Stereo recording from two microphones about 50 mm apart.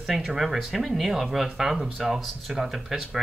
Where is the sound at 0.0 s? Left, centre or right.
Centre.